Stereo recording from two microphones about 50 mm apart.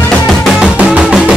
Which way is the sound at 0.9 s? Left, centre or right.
Right.